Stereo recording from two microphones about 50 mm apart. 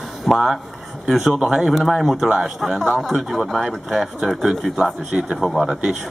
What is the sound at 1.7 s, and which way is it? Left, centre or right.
Speech, centre.